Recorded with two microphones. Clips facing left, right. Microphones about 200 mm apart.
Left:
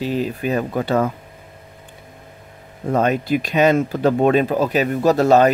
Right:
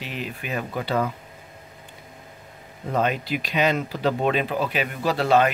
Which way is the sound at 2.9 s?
45° left (ahead or behind).